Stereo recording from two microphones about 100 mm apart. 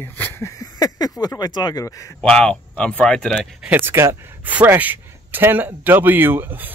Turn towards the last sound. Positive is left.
turn(degrees=-20)  # may be behind; listen again after turning